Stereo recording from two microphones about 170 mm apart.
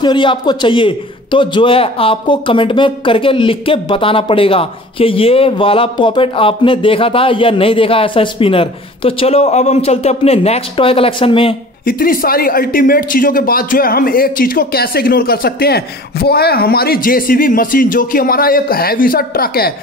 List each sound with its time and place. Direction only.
0.0 s a man's voice: 30° left (ahead or behind)
11.8 s speech: 55° left (ahead or behind)